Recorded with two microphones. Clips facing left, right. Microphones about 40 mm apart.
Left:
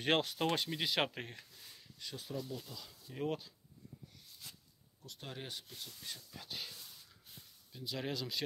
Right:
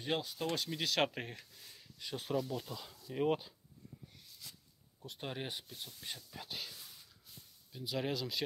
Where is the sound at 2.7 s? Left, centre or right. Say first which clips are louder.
Right 5 dB; right.